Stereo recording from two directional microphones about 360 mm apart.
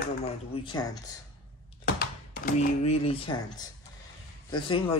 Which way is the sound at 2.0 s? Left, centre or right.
Left.